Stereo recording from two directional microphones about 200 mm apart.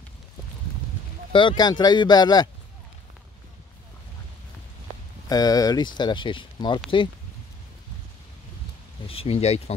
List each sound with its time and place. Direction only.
1.3 s speech: 20° left (ahead or behind)
5.3 s speech: 20° left (ahead or behind)
9.0 s speech: 30° left (ahead or behind)